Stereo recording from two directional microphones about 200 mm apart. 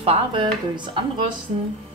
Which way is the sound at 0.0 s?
25° right (ahead or behind).